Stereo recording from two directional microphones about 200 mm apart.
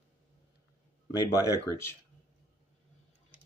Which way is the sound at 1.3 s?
15° left (ahead or behind).